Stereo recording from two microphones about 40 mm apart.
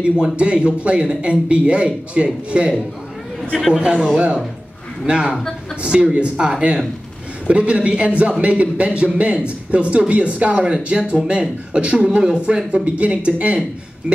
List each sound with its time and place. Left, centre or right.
0.0 s a man's voice: right
3.7 s a man's voice: right